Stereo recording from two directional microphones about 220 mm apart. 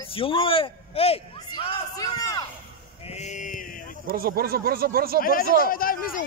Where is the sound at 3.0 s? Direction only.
30° left (ahead or behind).